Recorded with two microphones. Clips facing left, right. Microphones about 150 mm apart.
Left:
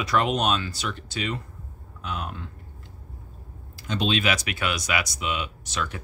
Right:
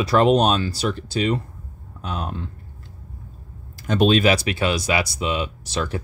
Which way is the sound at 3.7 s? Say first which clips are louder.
Right 8 dB; 50° right (ahead or behind).